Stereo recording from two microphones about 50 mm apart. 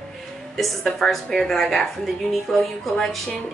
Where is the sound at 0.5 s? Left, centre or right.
Centre.